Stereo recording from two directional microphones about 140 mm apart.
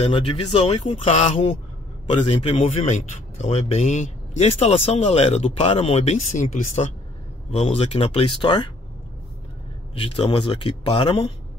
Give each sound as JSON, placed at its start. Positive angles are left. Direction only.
{"t": 0.0, "sound": "speech", "side_deg": 40}
{"t": 2.0, "sound": "speech", "side_deg": 40}
{"t": 7.5, "sound": "speech", "side_deg": 45}
{"t": 9.9, "sound": "speech", "side_deg": 40}